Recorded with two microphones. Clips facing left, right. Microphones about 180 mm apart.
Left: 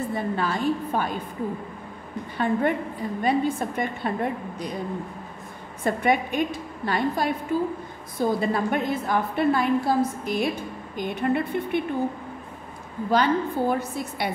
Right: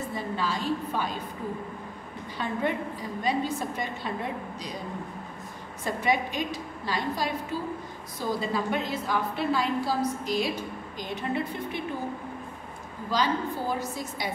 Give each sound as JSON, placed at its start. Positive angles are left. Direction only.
{"t": 0.1, "sound": "a woman's voice", "side_deg": 55}
{"t": 2.3, "sound": "a woman's voice", "side_deg": 55}
{"t": 5.9, "sound": "a woman's voice", "side_deg": 55}
{"t": 13.1, "sound": "a woman's voice", "side_deg": 60}